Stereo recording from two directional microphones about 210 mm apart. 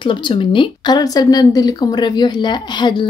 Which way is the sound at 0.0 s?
25° left (ahead or behind).